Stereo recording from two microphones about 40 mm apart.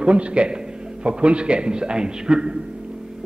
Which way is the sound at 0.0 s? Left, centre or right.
Right.